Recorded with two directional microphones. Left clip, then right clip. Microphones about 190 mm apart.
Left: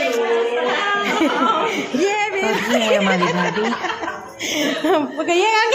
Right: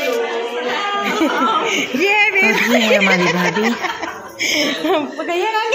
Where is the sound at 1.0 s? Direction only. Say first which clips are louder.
Right 1 dB; 5° right (ahead or behind).